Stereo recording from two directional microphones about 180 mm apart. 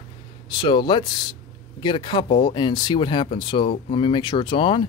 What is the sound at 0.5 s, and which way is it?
Speech, 25° left (ahead or behind).